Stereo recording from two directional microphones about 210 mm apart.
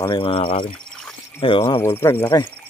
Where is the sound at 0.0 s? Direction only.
25° left (ahead or behind).